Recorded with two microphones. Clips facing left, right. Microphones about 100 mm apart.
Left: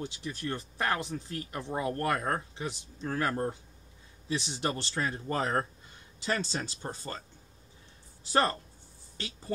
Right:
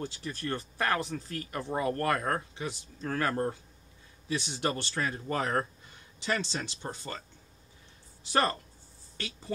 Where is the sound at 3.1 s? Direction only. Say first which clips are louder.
Right 1 dB; 15° left (ahead or behind); by 7.2 s 35° left (ahead or behind).